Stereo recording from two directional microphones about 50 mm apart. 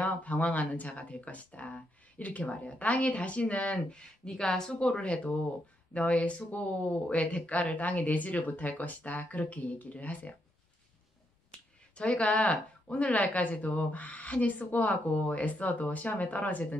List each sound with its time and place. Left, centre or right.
0.0 s speech: left
12.0 s speech: left